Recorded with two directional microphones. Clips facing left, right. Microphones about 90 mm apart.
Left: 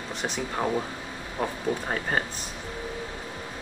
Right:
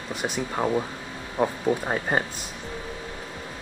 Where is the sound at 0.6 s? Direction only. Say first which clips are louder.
Right 3 dB; 20° right (ahead or behind).